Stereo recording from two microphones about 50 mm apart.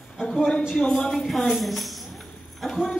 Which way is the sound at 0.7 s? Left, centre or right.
Centre.